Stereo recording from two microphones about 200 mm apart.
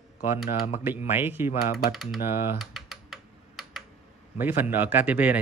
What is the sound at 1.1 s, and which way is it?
Speech, 10° right (ahead or behind).